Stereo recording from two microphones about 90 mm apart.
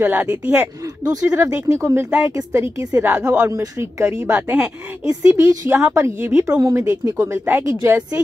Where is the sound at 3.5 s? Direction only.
35° right (ahead or behind).